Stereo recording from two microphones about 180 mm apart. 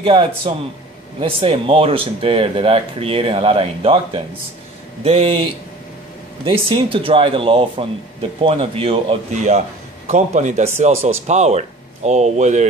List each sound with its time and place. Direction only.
0.0 s speech: 30° right (ahead or behind)